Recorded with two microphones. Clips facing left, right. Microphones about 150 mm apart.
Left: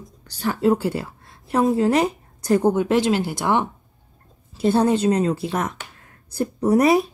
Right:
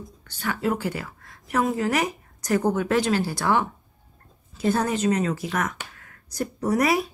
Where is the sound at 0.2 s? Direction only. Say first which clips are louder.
Left 6 dB; 35° left (ahead or behind).